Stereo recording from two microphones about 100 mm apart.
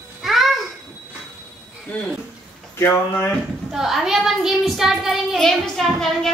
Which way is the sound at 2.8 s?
25° left (ahead or behind).